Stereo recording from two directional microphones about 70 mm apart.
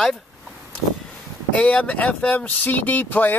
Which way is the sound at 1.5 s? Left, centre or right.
Centre.